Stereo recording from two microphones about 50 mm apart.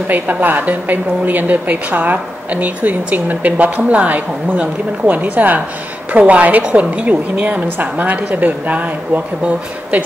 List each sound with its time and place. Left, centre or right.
0.1 s a woman's voice: right